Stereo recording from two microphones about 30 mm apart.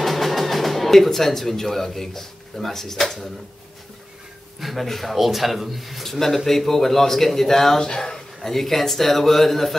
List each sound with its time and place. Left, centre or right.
0.0 s speech: centre
4.6 s a man's voice: centre
5.1 s speech: centre
6.0 s a man's voice: centre